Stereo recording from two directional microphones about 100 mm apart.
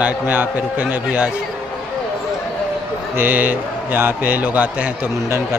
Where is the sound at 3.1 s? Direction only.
20° right (ahead or behind).